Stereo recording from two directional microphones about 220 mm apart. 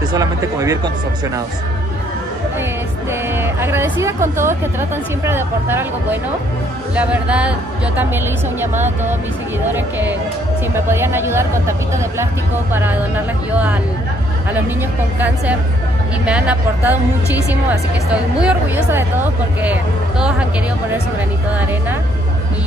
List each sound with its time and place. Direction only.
0.1 s speech: 15° right (ahead or behind)
3.1 s speech: 10° right (ahead or behind)
10.9 s speech: 10° right (ahead or behind)
15.1 s speech: 10° right (ahead or behind)